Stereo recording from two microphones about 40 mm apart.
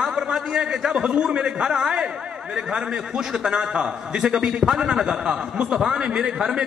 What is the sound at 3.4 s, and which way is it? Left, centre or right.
A man's voice, right.